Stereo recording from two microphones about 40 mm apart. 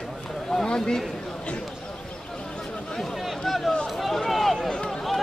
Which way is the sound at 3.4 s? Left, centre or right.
Centre.